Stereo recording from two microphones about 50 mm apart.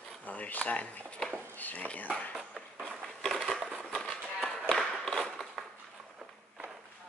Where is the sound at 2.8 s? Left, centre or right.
Centre.